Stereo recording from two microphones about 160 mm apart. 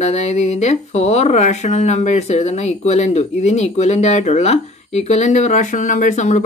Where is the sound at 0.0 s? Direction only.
45° left (ahead or behind).